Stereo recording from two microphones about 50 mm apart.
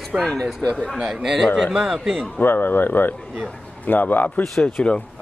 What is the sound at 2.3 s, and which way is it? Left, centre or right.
A man's voice, left.